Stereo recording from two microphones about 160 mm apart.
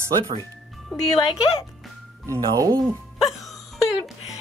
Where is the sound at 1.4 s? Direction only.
35° left (ahead or behind).